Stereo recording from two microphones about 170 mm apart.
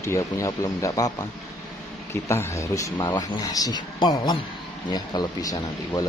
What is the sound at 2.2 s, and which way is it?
Speech, 15° left (ahead or behind).